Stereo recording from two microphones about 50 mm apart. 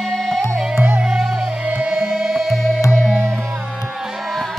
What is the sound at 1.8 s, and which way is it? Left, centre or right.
Music, centre.